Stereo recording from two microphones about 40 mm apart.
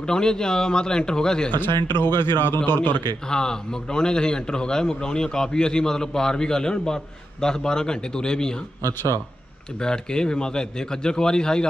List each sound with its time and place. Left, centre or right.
0.0 s a man's voice: centre
1.6 s speech: left
3.3 s a man's voice: centre
9.8 s a man's voice: centre